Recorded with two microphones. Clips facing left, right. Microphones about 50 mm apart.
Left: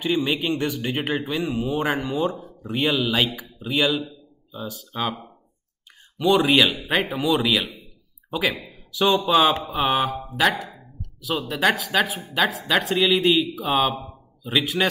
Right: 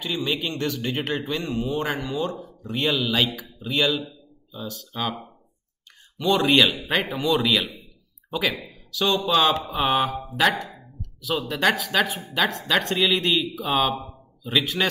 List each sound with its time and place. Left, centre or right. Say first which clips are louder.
0.0 s a man's voice: left 4 dB; centre
8.9 s speech: left 3 dB; left
9.2 s a man's voice: left 2 dB; centre